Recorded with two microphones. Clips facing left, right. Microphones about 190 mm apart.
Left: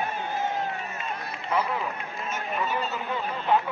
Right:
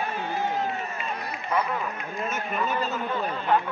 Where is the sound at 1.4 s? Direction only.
5° left (ahead or behind).